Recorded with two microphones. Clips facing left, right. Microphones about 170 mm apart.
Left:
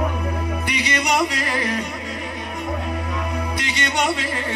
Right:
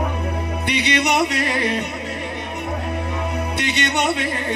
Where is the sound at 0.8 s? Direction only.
65° right (ahead or behind).